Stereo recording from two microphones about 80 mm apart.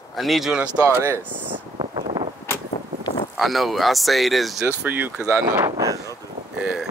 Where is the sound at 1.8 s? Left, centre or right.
Right.